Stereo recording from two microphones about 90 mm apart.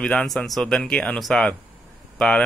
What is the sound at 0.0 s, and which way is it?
Speech, 5° left (ahead or behind).